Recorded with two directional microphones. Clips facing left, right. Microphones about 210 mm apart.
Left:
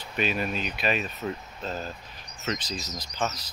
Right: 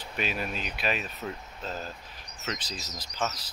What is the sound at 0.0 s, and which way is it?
Speech, 5° right (ahead or behind).